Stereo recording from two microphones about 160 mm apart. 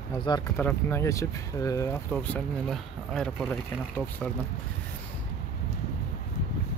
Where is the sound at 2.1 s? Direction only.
5° left (ahead or behind).